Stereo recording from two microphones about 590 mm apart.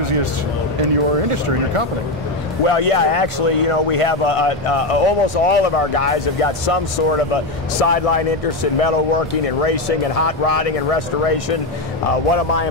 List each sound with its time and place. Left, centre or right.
0.0 s a sound: right
2.6 s speech: left
12.1 s speech: left